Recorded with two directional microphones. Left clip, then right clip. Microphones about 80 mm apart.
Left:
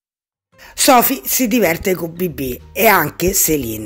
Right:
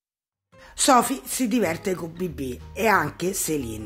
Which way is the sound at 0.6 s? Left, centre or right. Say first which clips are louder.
Left 7 dB; left.